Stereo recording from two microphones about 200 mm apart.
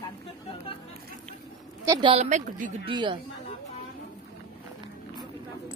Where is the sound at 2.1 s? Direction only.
35° right (ahead or behind).